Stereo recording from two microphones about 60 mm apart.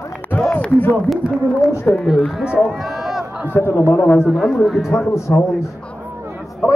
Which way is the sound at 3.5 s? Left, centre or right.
Left.